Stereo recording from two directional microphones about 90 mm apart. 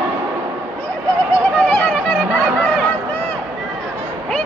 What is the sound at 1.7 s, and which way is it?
Chatter, 15° left (ahead or behind).